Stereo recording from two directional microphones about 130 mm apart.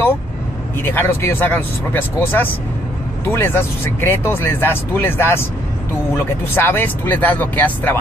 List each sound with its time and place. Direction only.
0.7 s speech: 15° left (ahead or behind)
6.5 s speech: 15° left (ahead or behind)